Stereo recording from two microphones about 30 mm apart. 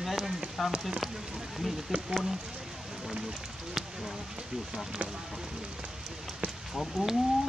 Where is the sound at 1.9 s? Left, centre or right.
Centre.